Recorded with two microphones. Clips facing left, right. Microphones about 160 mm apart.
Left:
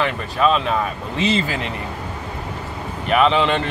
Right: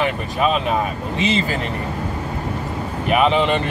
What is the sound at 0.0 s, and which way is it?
Speech, 10° right (ahead or behind).